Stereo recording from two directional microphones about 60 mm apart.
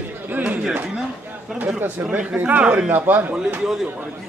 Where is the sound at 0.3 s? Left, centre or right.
Right.